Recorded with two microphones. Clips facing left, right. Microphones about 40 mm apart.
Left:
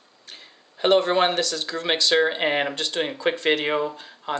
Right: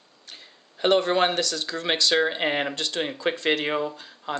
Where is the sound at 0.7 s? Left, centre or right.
Centre.